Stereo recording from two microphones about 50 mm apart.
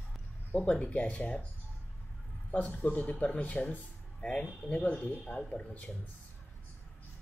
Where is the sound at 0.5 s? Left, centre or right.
Left.